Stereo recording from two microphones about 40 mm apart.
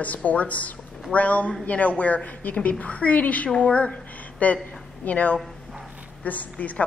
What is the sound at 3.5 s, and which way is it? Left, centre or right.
A woman's voice, left.